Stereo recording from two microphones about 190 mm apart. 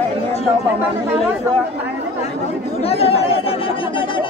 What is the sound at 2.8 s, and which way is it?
Chatter, 30° left (ahead or behind).